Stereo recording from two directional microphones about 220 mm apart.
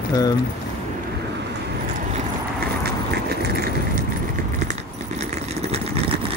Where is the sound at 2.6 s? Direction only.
45° right (ahead or behind).